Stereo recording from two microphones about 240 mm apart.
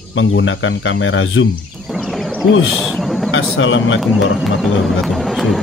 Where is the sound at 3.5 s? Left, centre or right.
Left.